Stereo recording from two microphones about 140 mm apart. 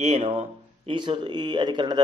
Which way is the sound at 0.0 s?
50° right (ahead or behind).